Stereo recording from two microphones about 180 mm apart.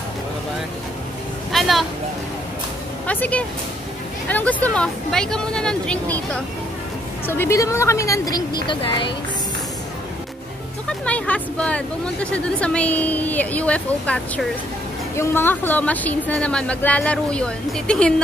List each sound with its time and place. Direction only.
1.5 s vehicle: centre (ahead or behind)
3.1 s speech: 10° left (ahead or behind)
10.9 s speech: 5° left (ahead or behind)